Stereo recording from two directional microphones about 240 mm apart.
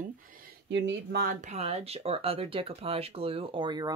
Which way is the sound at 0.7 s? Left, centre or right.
Right.